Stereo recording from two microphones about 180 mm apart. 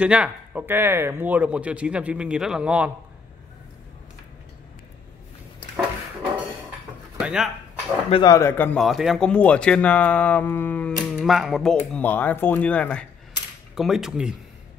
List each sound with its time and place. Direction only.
0.0 s speech: 5° right (ahead or behind)
7.2 s speech: 5° right (ahead or behind)
8.1 s speech: 20° left (ahead or behind)
8.8 s speech: centre (ahead or behind)
11.1 s speech: centre (ahead or behind)